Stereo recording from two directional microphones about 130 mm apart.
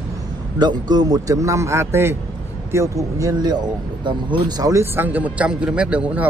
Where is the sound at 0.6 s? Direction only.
35° right (ahead or behind).